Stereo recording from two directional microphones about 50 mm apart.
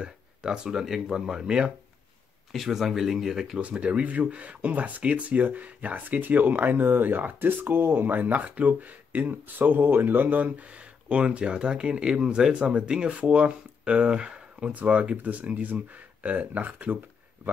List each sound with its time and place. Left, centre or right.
0.0 s speech: centre
3.5 s speech: right
11.1 s speech: right